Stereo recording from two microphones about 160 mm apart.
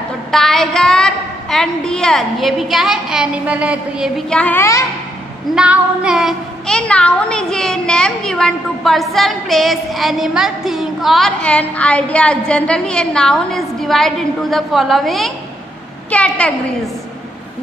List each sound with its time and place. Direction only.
0.3 s a woman's voice: centre (ahead or behind)
4.3 s a woman's voice: 10° left (ahead or behind)
5.5 s a woman's voice: 5° right (ahead or behind)